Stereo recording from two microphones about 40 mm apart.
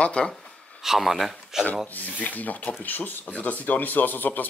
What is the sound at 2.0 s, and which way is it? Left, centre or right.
Speech, left.